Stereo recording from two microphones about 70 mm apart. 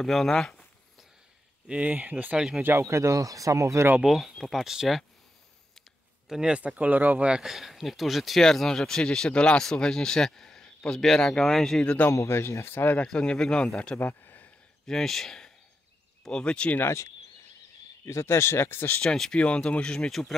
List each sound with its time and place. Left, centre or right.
0.0 s speech: centre
1.7 s speech: centre
2.3 s speech: centre
2.6 s speech: right
4.0 s speech: centre
6.2 s speech: centre
7.4 s speech: centre
11.8 s speech: centre
12.1 s speech: left
13.0 s speech: centre
13.9 s a sound: left
14.9 s speech: centre
18.0 s speech: left
19.0 s speech: centre